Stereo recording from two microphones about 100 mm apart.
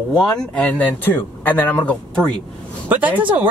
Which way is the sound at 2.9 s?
15° right (ahead or behind).